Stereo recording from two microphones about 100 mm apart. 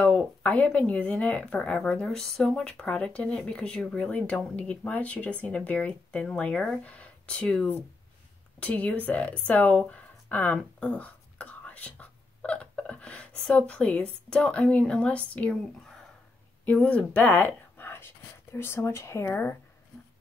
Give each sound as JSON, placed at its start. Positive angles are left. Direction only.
{"t": 0.0, "sound": "speech", "side_deg": 15}
{"t": 9.5, "sound": "a sound", "side_deg": 15}
{"t": 13.4, "sound": "speech", "side_deg": 10}
{"t": 16.6, "sound": "speech", "side_deg": 10}